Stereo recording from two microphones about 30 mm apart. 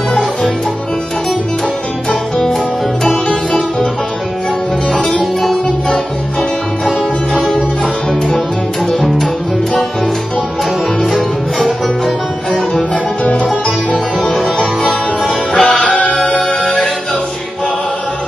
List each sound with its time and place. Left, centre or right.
5.2 s music: centre
9.0 s music: centre
11.1 s music: centre
12.7 s music: left
14.3 s music: centre
15.2 s music: left
15.9 s music: left
16.6 s music: left